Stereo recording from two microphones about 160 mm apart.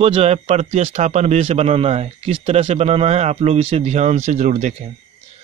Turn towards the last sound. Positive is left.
turn(degrees=-50)  # may be behind; listen again after turning